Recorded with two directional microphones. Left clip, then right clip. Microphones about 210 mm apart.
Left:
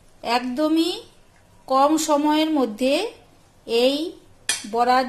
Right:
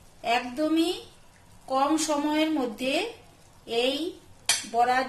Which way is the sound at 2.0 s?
30° left (ahead or behind).